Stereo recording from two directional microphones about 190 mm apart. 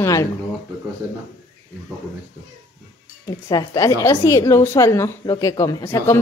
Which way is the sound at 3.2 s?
20° left (ahead or behind).